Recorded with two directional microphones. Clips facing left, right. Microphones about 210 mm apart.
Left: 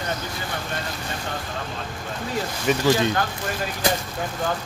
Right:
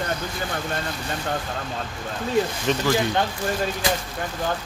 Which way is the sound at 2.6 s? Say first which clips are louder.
Left 2 dB; 15° left (ahead or behind).